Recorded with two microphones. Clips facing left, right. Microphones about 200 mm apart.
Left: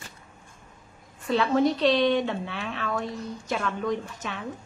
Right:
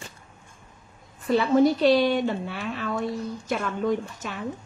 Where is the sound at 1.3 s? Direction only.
Centre (ahead or behind).